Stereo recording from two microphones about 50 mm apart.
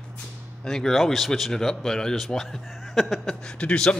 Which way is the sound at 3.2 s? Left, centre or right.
Centre.